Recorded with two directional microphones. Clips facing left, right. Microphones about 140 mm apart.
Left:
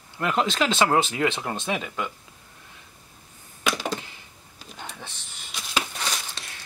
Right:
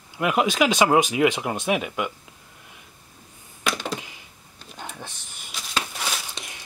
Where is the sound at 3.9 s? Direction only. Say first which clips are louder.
Right 2 dB; 15° right (ahead or behind).